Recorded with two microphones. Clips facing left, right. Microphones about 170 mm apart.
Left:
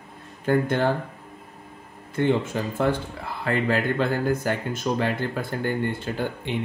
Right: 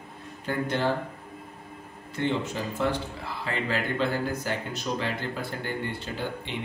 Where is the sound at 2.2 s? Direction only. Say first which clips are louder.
Left 5 dB; 50° left (ahead or behind).